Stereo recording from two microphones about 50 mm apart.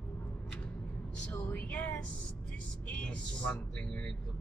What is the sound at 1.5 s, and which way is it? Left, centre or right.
Speech, left.